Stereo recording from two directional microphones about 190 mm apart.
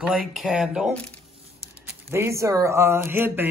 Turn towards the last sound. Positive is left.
turn(degrees=-10)  # may be behind; listen again after turning